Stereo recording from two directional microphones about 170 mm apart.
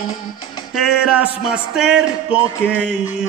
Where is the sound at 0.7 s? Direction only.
5° right (ahead or behind).